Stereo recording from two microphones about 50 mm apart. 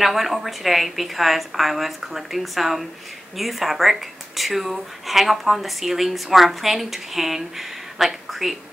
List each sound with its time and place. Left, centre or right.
0.0 s speech: centre